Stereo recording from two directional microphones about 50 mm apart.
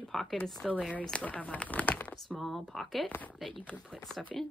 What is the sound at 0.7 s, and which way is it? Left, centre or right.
Speech, left.